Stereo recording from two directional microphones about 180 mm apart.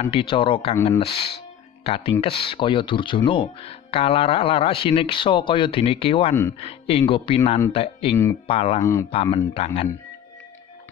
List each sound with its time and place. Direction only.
0.0 s speech: 30° left (ahead or behind)